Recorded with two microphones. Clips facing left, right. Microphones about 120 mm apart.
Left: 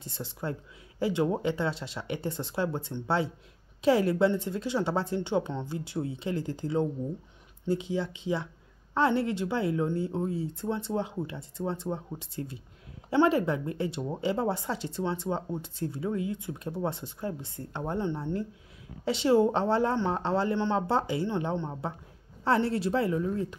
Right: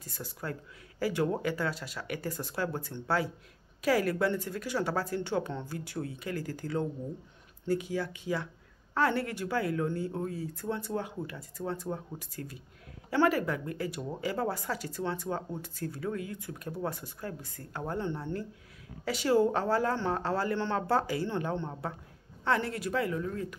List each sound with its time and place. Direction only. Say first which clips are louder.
0.0 s speech: left 4 dB; 25° left (ahead or behind)
22.4 s speech: left 4 dB; 30° left (ahead or behind)